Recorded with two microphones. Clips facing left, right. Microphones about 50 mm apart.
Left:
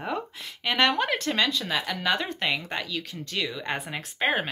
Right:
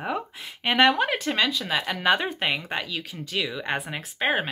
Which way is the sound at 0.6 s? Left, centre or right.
Right.